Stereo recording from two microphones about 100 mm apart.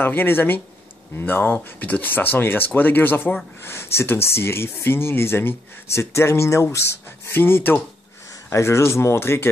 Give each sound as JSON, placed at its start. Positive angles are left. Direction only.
{"t": 0.0, "sound": "speech", "side_deg": 20}